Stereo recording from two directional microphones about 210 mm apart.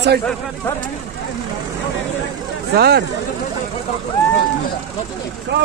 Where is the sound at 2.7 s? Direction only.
50° right (ahead or behind).